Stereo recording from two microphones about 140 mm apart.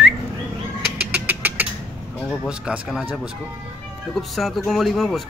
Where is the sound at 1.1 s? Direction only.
15° right (ahead or behind).